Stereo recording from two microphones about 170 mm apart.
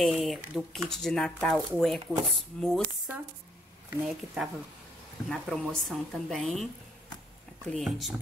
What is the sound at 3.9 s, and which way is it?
Speech, 5° right (ahead or behind).